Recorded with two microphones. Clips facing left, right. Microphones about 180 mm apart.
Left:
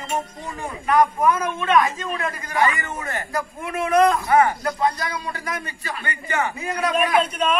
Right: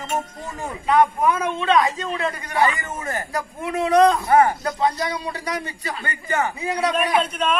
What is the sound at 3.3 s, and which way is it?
Speech, 20° right (ahead or behind).